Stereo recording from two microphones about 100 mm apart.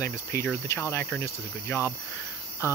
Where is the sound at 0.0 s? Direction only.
25° left (ahead or behind).